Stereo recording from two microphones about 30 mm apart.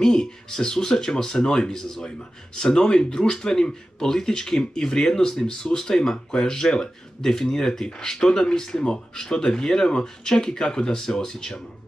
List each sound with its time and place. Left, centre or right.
0.0 s speech: centre
10.0 s speech: centre